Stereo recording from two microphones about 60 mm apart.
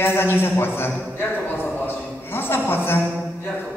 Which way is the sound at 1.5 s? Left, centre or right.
Left.